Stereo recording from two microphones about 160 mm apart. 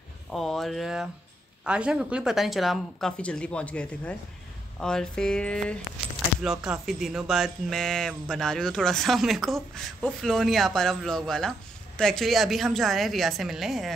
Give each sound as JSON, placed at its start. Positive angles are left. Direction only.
{"t": 0.3, "sound": "speech", "side_deg": 0}